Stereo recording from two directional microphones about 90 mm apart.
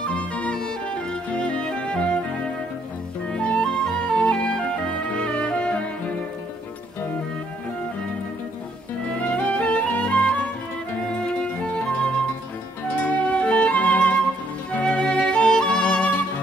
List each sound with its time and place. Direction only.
0.0 s music: 10° left (ahead or behind)
3.3 s music: 10° left (ahead or behind)
9.1 s music: 15° left (ahead or behind)